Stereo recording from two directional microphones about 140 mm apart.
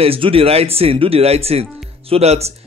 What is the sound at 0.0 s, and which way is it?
Speech, 40° right (ahead or behind).